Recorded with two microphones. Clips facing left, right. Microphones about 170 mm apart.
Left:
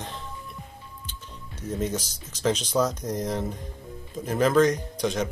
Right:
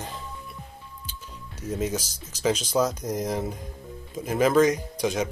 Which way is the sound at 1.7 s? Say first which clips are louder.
Right 1 dB; 5° right (ahead or behind).